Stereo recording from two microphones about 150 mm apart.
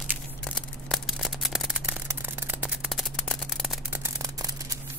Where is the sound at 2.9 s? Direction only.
Centre (ahead or behind).